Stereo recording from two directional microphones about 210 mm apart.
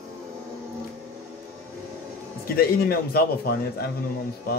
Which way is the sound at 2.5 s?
45° left (ahead or behind).